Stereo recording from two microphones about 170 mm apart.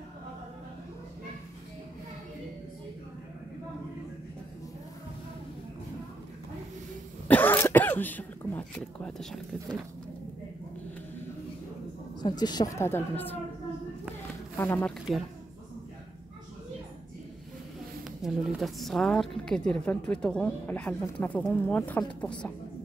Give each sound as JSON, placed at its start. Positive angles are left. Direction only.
{"t": 7.2, "sound": "speech", "side_deg": 10}
{"t": 12.2, "sound": "speech", "side_deg": 25}
{"t": 14.6, "sound": "speech", "side_deg": 10}
{"t": 18.2, "sound": "a woman's voice", "side_deg": 0}